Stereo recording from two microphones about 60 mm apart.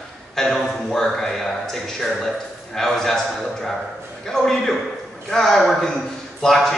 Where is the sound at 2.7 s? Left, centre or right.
Centre.